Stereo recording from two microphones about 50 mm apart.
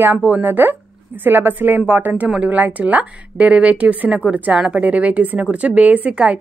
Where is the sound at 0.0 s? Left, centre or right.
Right.